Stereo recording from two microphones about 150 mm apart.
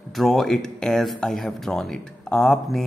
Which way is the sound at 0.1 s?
Centre (ahead or behind).